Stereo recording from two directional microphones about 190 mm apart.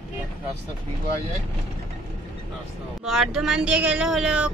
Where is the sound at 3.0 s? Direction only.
Centre (ahead or behind).